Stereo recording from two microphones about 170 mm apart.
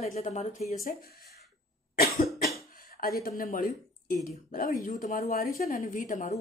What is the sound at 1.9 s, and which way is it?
Cough, 65° left (ahead or behind).